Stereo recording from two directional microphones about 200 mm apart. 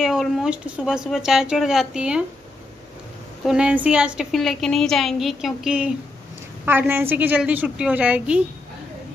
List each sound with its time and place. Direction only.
0.0 s a woman's voice: centre (ahead or behind)
3.4 s a woman's voice: 5° right (ahead or behind)